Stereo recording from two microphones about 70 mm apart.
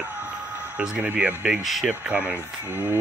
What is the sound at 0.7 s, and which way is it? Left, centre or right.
Speech, centre.